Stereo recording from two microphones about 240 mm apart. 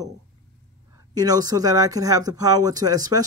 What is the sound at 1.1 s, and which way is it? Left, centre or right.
Speech, centre.